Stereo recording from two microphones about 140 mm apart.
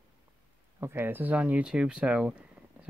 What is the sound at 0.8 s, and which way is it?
Speech, 15° right (ahead or behind).